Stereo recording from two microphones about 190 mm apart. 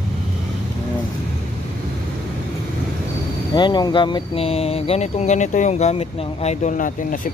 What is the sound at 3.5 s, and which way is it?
Speech, 20° left (ahead or behind).